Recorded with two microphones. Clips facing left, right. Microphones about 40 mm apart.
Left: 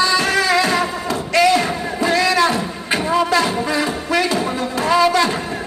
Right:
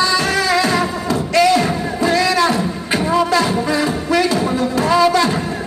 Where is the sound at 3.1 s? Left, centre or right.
Left.